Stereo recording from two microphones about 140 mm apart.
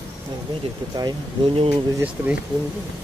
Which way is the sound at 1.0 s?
35° right (ahead or behind).